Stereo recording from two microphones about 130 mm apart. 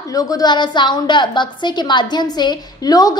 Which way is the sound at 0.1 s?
25° left (ahead or behind).